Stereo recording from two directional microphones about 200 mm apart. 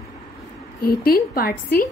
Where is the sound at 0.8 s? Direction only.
50° left (ahead or behind).